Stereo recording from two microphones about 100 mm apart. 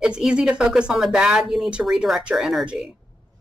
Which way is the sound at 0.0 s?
10° right (ahead or behind).